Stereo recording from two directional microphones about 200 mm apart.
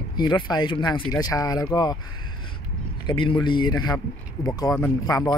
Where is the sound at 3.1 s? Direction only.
25° left (ahead or behind).